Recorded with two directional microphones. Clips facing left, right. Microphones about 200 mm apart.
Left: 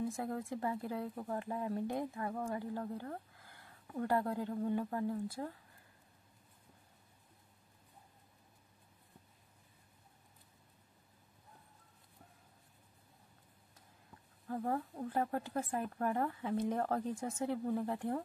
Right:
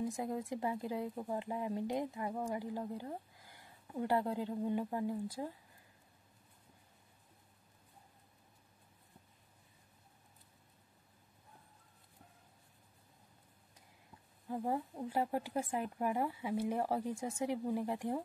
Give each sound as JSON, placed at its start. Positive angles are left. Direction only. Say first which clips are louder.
{"t": 0.0, "sound": "speech", "louder": "even", "side_deg": -15}
{"t": 14.5, "sound": "speech", "louder": "even", "side_deg": -15}